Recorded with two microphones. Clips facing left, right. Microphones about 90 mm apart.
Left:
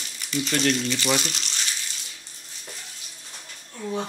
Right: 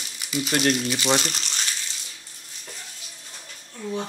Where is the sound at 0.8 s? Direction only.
15° right (ahead or behind).